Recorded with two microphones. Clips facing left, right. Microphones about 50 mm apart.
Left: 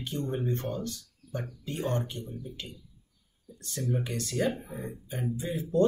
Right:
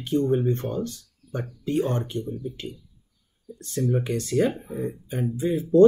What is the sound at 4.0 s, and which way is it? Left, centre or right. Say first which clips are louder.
Speech: right 6 dB; right.